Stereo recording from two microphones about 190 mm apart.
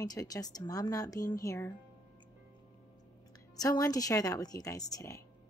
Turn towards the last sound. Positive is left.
turn(degrees=15)  # may be behind; listen again after turning